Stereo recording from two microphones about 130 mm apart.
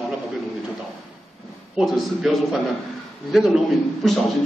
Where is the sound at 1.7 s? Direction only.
Centre (ahead or behind).